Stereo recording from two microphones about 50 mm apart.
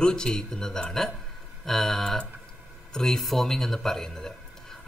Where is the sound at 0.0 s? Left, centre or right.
Centre.